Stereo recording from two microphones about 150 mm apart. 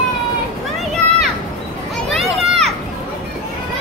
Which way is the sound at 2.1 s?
Centre (ahead or behind).